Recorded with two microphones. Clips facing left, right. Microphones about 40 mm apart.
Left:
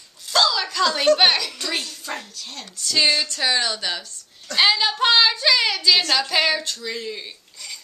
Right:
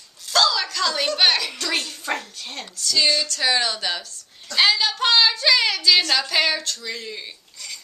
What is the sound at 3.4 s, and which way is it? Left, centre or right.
Speech, centre.